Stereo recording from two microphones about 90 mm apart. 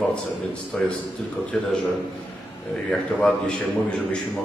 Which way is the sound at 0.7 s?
15° left (ahead or behind).